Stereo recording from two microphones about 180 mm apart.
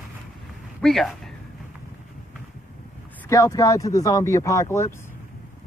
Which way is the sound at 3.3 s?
20° left (ahead or behind).